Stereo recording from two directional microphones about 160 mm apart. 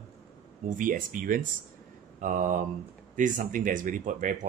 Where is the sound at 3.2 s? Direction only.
55° right (ahead or behind).